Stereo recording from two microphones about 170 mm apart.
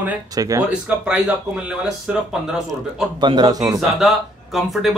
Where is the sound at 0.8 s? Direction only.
5° right (ahead or behind).